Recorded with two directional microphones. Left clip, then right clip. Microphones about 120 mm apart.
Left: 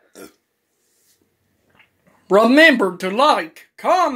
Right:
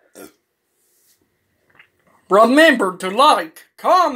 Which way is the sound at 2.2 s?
35° left (ahead or behind).